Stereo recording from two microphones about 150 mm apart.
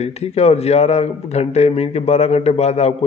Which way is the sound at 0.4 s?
45° left (ahead or behind).